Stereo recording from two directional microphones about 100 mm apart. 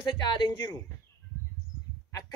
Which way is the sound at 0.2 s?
45° left (ahead or behind).